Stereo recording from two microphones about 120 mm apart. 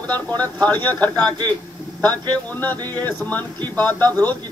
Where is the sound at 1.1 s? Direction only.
35° right (ahead or behind).